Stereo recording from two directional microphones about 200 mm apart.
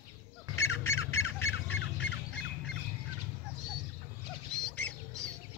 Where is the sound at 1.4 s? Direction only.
75° left (ahead or behind).